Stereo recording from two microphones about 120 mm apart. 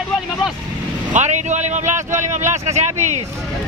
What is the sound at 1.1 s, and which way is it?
Speech, 80° right.